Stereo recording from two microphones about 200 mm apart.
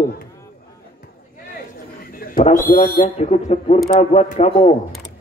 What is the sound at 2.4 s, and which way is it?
Speech, 40° left (ahead or behind).